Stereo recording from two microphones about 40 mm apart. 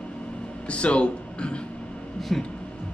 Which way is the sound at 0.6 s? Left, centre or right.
Left.